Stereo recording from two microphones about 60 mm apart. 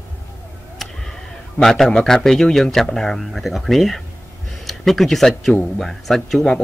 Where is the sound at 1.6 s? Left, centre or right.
Centre.